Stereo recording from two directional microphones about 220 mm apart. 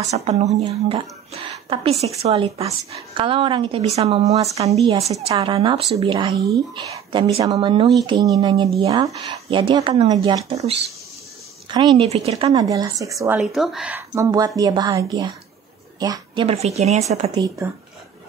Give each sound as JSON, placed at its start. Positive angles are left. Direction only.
{"t": 0.1, "sound": "a woman's voice", "side_deg": -30}
{"t": 12.5, "sound": "a woman's voice", "side_deg": -15}
{"t": 13.4, "sound": "a woman's voice", "side_deg": 0}
{"t": 16.4, "sound": "a woman's voice", "side_deg": -30}